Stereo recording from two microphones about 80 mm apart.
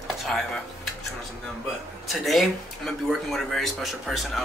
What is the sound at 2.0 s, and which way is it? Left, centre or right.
Speech, centre.